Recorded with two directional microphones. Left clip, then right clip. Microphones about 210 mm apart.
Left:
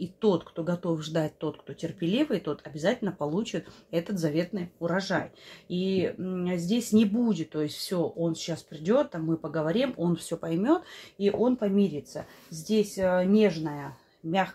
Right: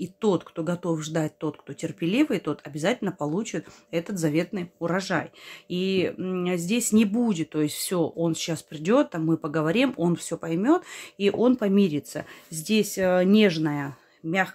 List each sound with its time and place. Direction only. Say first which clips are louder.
0.0 s speech: right 1 dB; 30° right (ahead or behind)
10.1 s speech: right 2 dB; 20° right (ahead or behind); by 13.8 s 40° right (ahead or behind)